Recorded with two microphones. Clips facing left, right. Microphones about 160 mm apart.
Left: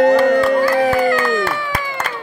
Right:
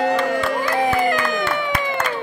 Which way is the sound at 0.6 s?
20° right (ahead or behind).